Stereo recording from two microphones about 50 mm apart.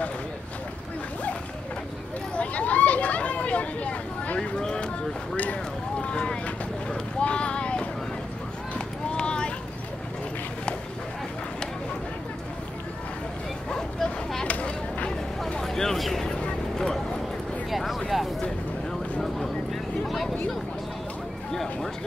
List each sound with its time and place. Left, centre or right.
2.3 s chatter: left
5.3 s vehicle: left
8.7 s run: centre
13.7 s bow-wow: centre
15.6 s vehicle: centre
16.3 s vehicle: left
17.6 s a sound: centre
19.3 s a sound: centre